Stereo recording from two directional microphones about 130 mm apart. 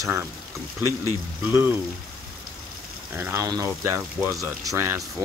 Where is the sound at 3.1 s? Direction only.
15° right (ahead or behind).